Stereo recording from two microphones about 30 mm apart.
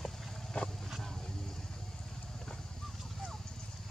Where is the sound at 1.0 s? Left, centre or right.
Centre.